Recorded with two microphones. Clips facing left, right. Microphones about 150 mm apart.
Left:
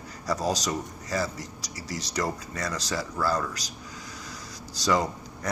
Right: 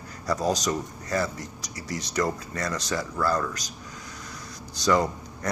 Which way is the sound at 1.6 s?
55° right (ahead or behind).